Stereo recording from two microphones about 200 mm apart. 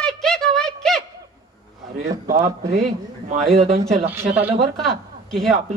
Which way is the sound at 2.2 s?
40° right (ahead or behind).